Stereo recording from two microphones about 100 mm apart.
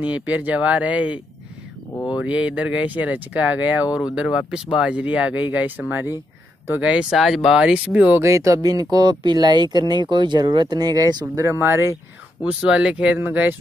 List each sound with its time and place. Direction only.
0.0 s speech: 15° right (ahead or behind)
7.1 s speech: centre (ahead or behind)
8.2 s speech: 30° right (ahead or behind)
11.4 s speech: 25° right (ahead or behind)
12.4 s speech: 10° right (ahead or behind)